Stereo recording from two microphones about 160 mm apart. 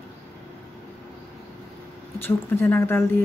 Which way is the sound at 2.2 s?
15° left (ahead or behind).